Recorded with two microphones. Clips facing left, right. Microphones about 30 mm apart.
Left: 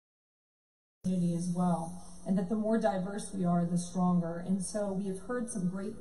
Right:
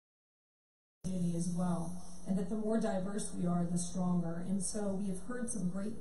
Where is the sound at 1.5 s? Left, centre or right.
Centre.